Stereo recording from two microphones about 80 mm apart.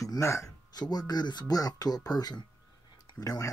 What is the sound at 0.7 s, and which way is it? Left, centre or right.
Speech, left.